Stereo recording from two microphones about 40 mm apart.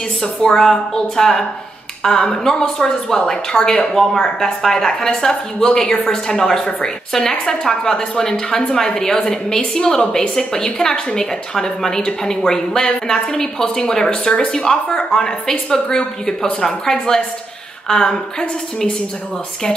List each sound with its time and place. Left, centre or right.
0.2 s a woman's voice: centre